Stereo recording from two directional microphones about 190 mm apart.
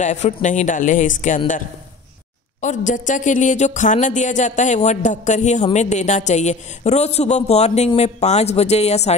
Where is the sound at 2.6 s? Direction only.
40° left (ahead or behind).